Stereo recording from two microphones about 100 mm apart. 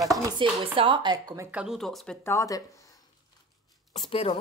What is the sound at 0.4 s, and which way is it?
Speech, 55° right (ahead or behind).